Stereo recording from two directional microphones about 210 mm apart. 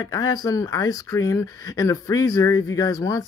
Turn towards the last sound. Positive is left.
turn(degrees=15)  # may be behind; listen again after turning